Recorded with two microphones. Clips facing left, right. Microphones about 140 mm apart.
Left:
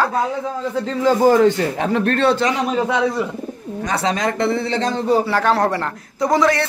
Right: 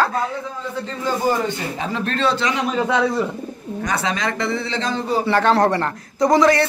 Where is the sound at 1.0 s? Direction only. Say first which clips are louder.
Left 8 dB; 90° left; by 2.5 s 55° left (ahead or behind).